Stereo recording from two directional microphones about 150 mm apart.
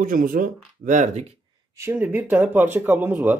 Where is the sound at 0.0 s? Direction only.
65° right (ahead or behind).